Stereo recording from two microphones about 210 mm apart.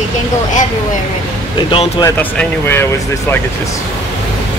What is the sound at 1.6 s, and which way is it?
Speech, 25° left (ahead or behind).